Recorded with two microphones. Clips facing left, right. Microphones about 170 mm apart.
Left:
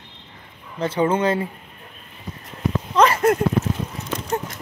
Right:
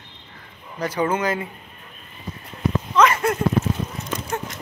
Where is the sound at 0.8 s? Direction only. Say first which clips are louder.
Left 3 dB; 25° left (ahead or behind).